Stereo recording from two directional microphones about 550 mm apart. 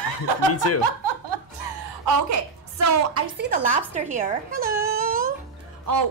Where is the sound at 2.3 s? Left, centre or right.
Right.